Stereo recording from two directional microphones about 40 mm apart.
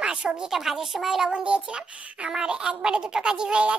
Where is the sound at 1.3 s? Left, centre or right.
Right.